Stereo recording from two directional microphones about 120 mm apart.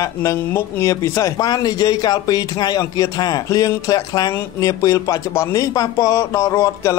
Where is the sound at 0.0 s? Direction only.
25° left (ahead or behind).